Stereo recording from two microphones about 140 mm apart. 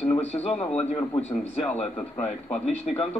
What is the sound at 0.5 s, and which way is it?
A man's voice, 10° left (ahead or behind).